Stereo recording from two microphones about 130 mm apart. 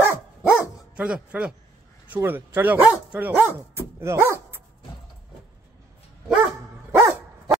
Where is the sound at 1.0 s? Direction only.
5° right (ahead or behind).